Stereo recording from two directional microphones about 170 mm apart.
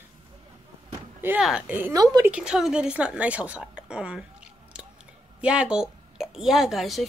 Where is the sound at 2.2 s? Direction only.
5° right (ahead or behind).